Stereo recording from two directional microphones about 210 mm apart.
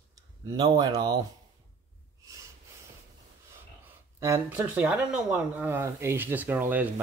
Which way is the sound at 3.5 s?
15° right (ahead or behind).